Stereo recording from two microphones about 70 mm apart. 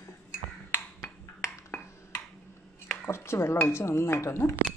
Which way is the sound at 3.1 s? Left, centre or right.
Left.